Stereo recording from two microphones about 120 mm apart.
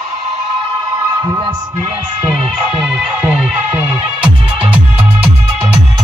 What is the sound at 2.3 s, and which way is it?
Music, centre (ahead or behind).